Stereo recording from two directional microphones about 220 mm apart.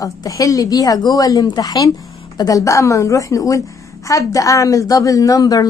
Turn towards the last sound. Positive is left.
turn(degrees=15)  # may be behind; listen again after turning